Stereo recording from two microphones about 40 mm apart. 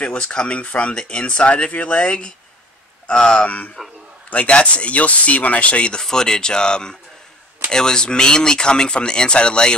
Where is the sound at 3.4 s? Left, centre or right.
Left.